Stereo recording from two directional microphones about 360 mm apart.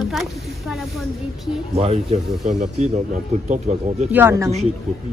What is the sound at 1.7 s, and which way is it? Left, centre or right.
Speech, centre.